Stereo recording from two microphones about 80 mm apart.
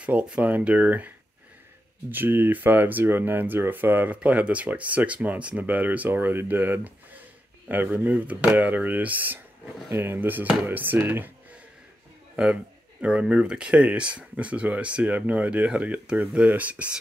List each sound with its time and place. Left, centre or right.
0.0 s speech: centre
13.0 s speech: centre